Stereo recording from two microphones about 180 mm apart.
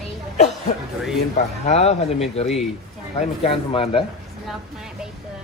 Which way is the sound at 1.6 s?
35° left (ahead or behind).